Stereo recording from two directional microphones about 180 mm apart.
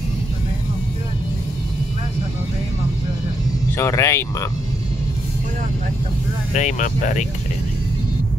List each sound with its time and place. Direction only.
3.7 s speech: 15° left (ahead or behind)
6.5 s speech: 40° left (ahead or behind)